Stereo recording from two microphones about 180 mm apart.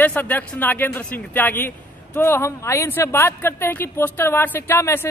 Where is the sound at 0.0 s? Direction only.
10° left (ahead or behind).